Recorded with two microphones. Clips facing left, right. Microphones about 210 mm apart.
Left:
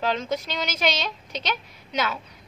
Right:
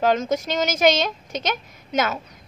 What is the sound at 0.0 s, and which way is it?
A woman's voice, 45° right (ahead or behind).